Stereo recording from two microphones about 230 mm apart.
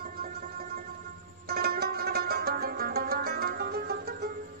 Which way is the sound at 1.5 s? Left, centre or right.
Right.